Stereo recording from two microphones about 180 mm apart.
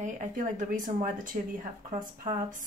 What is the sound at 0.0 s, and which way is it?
Speech, 45° right (ahead or behind).